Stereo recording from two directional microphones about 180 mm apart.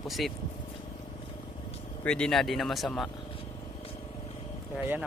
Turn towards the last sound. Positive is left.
turn(degrees=-5)  # may be behind; listen again after turning